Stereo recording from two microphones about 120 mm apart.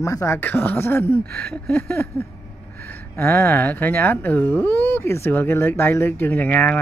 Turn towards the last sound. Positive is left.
turn(degrees=15)  # may be behind; listen again after turning